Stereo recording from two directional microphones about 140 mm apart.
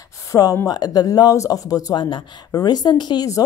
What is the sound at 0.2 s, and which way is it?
A woman's voice, 25° left (ahead or behind).